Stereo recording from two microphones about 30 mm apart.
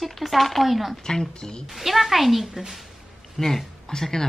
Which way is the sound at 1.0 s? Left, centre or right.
Left.